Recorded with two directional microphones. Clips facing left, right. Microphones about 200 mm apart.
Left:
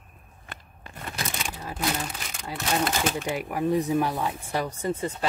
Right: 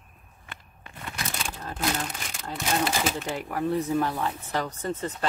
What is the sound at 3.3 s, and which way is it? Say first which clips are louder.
Speech: left 2 dB; 10° left (ahead or behind).